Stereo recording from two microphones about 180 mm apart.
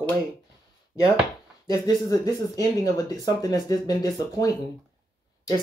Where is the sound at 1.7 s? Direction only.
20° left (ahead or behind).